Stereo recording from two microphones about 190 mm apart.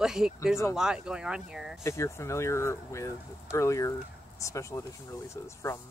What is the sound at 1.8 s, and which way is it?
Speech, 15° left (ahead or behind).